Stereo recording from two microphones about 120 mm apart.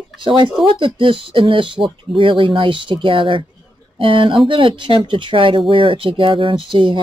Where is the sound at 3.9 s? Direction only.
45° right (ahead or behind).